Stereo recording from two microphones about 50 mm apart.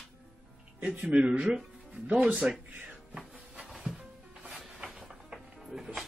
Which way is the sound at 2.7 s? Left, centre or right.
Right.